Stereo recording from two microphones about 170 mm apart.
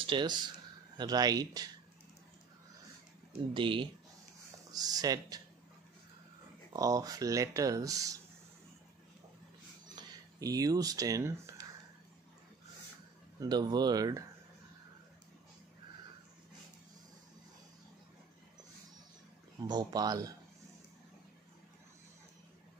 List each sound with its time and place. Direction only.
0.0 s speech: 25° right (ahead or behind)
3.5 s speech: 30° right (ahead or behind)
6.7 s speech: 20° right (ahead or behind)
9.8 s speech: 25° right (ahead or behind)
13.4 s speech: 25° right (ahead or behind)
19.7 s speech: 25° right (ahead or behind)